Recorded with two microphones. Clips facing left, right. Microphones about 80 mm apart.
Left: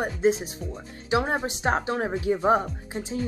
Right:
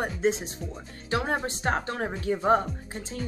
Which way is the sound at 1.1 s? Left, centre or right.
Centre.